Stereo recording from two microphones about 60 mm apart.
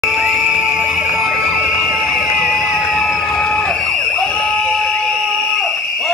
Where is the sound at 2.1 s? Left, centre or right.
Centre.